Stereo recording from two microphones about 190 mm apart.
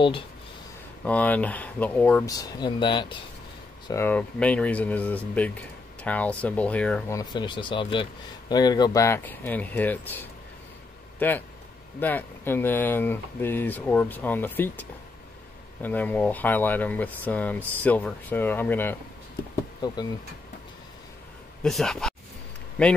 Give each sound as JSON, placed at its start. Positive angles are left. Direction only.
{"t": 1.0, "sound": "speech", "side_deg": 10}
{"t": 2.2, "sound": "speech", "side_deg": 20}
{"t": 3.8, "sound": "speech", "side_deg": 15}
{"t": 7.2, "sound": "speech", "side_deg": 25}
{"t": 21.6, "sound": "speech", "side_deg": 0}